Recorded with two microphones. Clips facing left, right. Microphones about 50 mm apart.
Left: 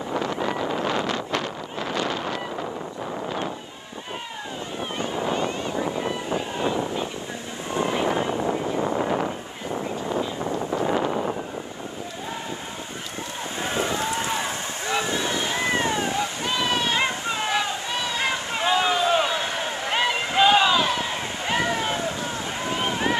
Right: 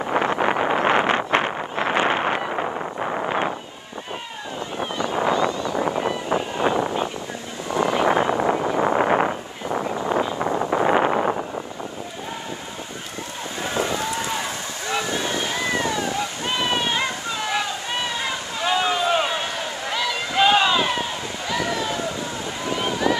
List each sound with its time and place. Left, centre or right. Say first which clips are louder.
0.0 s vehicle: right 5 dB; right
5.5 s vehicle: right 3 dB; left
5.8 s vehicle: right 4 dB; right
7.7 s a sound: right 4 dB; right
13.8 s run: even; left
15.2 s boat: even; left
16.4 s a sound: right 2 dB; right
16.9 s a sound: left 1 dB; left
18.9 s run: even; right
19.4 s a sound: even; left
20.7 s run: right 1 dB; right
21.0 s run: even; left